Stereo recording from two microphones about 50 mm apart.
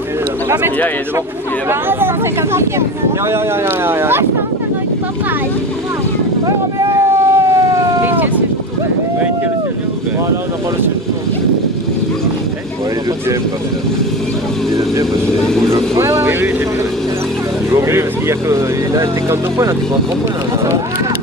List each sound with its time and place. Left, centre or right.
1.7 s speech: right
3.3 s speech: right
6.9 s a sound: right
8.0 s a sound: right
16.0 s speech: right
17.6 s speech: right